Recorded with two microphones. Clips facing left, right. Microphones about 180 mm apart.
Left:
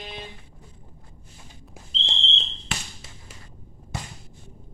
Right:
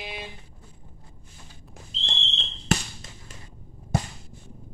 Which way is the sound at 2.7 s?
45° right (ahead or behind).